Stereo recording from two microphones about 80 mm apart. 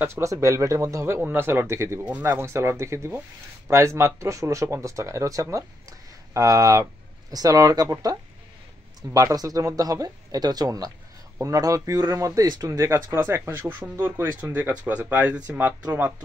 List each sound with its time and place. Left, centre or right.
0.0 s speech: right
2.0 s speech: centre
2.3 s speech: right